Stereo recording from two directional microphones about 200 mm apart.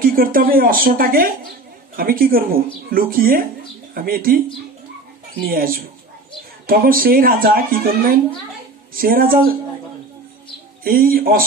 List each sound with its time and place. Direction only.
0.1 s speech: 45° right (ahead or behind)
5.4 s speech: 45° right (ahead or behind)
10.8 s speech: 45° right (ahead or behind)